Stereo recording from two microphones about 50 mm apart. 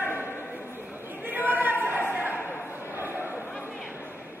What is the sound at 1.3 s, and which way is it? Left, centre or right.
Chatter, right.